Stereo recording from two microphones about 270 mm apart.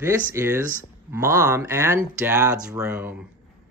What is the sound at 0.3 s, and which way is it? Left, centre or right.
Speech, centre.